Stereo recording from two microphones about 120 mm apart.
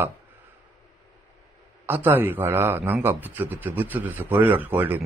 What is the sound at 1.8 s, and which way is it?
A man's voice, 15° right (ahead or behind).